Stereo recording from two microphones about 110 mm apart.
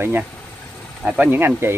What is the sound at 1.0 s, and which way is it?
Speech, 5° right (ahead or behind).